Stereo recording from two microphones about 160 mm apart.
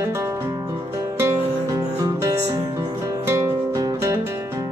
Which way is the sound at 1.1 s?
20° right (ahead or behind).